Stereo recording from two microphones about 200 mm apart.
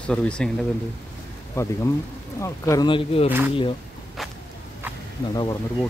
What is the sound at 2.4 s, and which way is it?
Speech, 15° left (ahead or behind).